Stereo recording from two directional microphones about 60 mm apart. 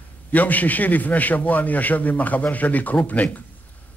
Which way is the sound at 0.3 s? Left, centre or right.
Left.